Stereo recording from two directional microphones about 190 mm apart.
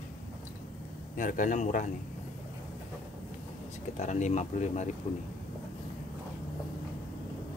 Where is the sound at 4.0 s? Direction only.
40° left (ahead or behind).